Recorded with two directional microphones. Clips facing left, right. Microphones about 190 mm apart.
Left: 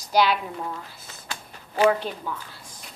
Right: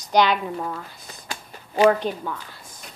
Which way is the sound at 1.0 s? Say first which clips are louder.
Right 2 dB; 15° right (ahead or behind).